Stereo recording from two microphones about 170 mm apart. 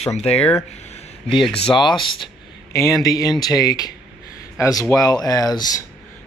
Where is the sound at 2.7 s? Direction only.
15° left (ahead or behind).